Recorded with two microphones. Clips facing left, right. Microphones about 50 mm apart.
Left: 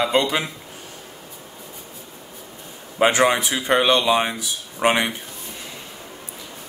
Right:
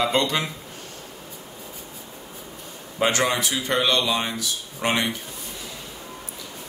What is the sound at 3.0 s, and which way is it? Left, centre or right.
Speech, left.